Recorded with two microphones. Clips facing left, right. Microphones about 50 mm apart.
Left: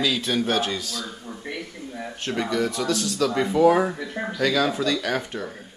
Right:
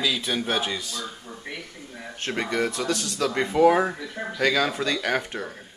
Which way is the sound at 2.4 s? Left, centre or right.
Centre.